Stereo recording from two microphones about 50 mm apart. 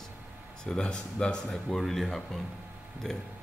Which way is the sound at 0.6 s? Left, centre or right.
Centre.